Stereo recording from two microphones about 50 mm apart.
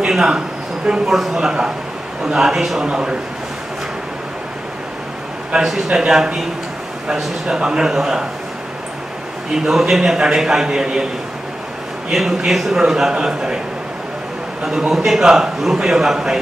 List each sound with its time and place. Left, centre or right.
0.0 s a sound: centre
0.8 s a man's voice: centre
2.9 s a man's voice: centre
5.7 s a man's voice: centre
9.7 s a man's voice: centre
12.1 s a man's voice: centre
14.6 s a man's voice: centre